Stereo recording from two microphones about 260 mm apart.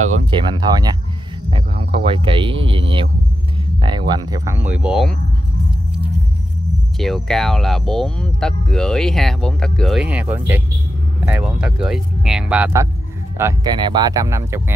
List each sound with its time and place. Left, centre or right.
0.0 s speech: right
0.6 s speech: centre
7.0 s speech: centre
11.6 s speech: centre